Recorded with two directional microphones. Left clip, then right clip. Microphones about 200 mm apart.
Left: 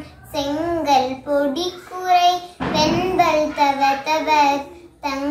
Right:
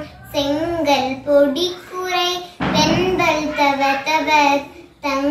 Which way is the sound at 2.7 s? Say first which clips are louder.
Even; 20° left (ahead or behind).